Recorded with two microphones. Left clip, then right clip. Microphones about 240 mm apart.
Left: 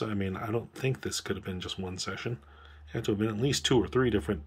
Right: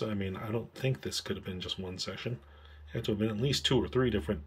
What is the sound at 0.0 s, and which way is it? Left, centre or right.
Speech, centre.